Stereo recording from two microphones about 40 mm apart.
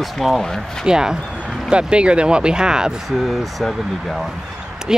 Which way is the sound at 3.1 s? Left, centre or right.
Centre.